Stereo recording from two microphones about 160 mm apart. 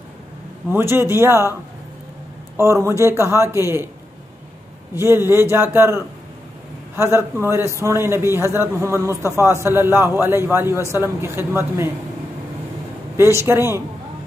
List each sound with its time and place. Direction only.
0.7 s a man's voice: 15° right (ahead or behind)
4.9 s a man's voice: 15° right (ahead or behind)
13.1 s a man's voice: 15° right (ahead or behind)